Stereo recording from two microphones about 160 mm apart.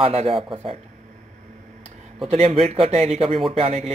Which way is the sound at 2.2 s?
40° right (ahead or behind).